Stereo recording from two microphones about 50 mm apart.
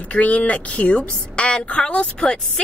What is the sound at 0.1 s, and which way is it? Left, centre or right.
A woman's voice, left.